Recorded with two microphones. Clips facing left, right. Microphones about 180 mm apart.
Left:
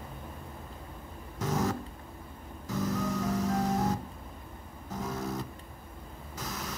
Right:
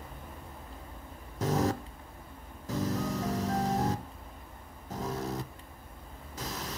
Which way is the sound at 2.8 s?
35° right (ahead or behind).